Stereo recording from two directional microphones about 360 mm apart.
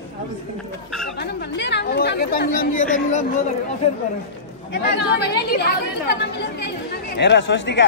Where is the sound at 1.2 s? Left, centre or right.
Left.